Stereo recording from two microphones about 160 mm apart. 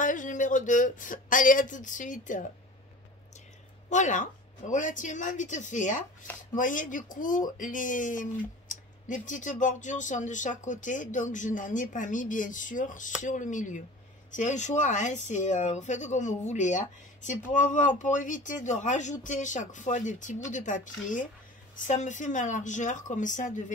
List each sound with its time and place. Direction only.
0.0 s speech: 55° left (ahead or behind)
3.9 s speech: 50° left (ahead or behind)